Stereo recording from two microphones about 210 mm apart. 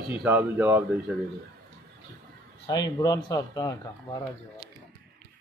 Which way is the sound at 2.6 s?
20° left (ahead or behind).